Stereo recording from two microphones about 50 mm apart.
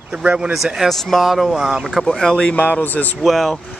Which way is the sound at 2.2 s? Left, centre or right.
Centre.